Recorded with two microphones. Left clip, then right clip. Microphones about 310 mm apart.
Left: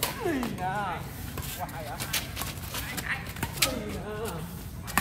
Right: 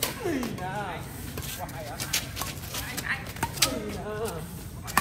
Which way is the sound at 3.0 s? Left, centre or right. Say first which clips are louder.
Right 2 dB; centre.